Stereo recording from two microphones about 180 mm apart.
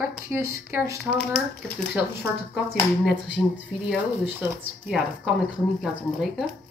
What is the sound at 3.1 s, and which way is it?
Speech, 5° right (ahead or behind).